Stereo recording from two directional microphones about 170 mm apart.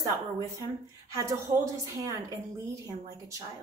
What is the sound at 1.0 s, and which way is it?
A woman's voice, 15° right (ahead or behind).